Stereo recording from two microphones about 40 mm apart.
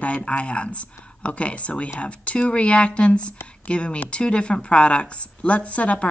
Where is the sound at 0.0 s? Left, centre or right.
Left.